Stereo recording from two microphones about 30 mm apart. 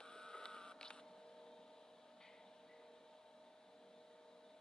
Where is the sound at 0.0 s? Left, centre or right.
Left.